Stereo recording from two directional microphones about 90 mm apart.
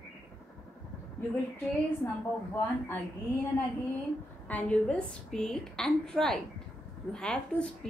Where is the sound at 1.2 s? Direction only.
25° left (ahead or behind).